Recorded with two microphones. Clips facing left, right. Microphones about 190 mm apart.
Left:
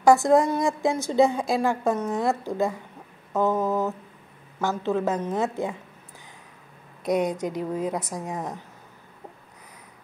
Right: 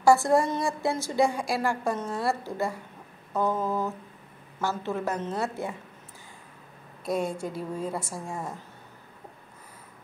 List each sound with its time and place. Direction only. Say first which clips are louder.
0.0 s a woman's voice: left 3 dB; 20° left (ahead or behind)
4.6 s a woman's voice: left 5 dB; 15° left (ahead or behind)
7.1 s a woman's voice: left 5 dB; 20° left (ahead or behind)